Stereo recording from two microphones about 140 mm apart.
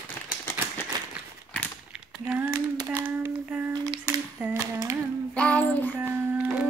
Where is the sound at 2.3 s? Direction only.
10° right (ahead or behind).